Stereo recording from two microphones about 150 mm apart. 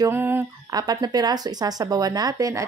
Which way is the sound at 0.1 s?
15° right (ahead or behind).